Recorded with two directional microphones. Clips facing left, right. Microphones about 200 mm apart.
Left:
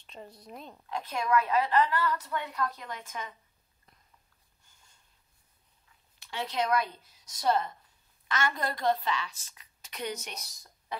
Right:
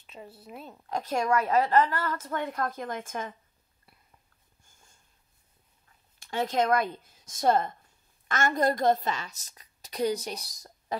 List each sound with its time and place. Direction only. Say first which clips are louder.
0.0 s speech: right 1 dB; 5° right (ahead or behind)
0.8 s a woman's voice: right 4 dB; 45° right (ahead or behind)
6.1 s a woman's voice: right 6 dB; 45° right (ahead or behind)